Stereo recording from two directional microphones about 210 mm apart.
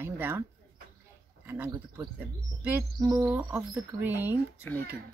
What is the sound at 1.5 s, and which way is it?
Speech, 10° right (ahead or behind).